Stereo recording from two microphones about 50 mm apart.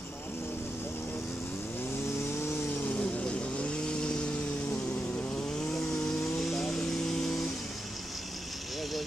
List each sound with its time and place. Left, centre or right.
3.0 s vehicle: left
5.7 s chainsaw: centre
6.5 s vehicle: centre